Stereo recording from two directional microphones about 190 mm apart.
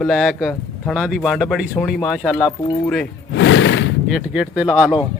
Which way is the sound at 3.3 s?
85° left.